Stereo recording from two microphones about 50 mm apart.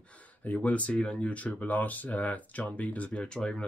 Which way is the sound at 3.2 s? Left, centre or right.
Centre.